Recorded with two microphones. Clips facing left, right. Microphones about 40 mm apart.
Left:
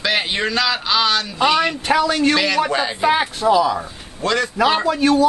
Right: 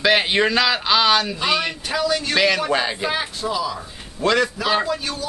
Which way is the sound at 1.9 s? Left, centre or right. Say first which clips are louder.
Left 6 dB; left.